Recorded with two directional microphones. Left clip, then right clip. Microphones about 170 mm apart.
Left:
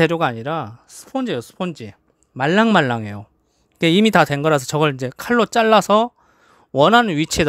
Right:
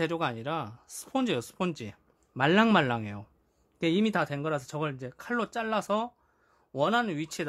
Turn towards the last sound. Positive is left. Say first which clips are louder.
# left 14 dB
turn(degrees=55)  # may be behind; listen again after turning